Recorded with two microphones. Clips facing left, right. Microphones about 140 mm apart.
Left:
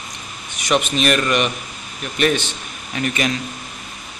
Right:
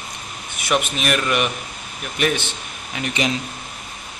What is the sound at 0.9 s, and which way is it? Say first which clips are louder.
Speech: left 3 dB; 10° right (ahead or behind).